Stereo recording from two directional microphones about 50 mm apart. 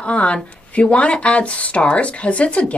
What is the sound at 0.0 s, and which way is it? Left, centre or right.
Speech, left.